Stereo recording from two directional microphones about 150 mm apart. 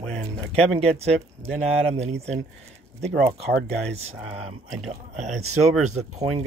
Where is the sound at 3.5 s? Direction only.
90° right.